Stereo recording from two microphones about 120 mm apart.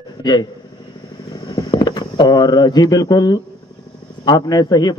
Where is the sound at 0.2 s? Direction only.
35° left (ahead or behind).